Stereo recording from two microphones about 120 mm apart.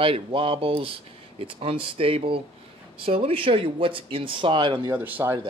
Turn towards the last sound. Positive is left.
turn(degrees=-15)  # may be behind; listen again after turning